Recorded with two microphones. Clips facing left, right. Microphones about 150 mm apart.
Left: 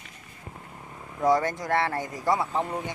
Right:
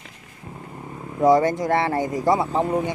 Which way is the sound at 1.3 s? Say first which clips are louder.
Right 6 dB; 20° right (ahead or behind).